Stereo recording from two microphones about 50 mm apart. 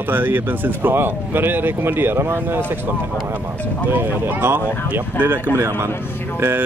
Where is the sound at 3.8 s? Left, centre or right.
Right.